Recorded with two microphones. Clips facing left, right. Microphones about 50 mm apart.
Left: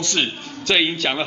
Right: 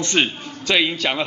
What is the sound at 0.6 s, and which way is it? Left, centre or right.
Speech, centre.